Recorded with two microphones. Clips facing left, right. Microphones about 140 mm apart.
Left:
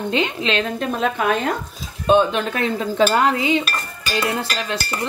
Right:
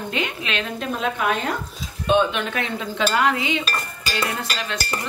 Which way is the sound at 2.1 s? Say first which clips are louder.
Left 3 dB; 40° left (ahead or behind).